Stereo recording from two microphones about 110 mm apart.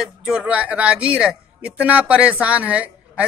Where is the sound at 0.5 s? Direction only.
15° right (ahead or behind).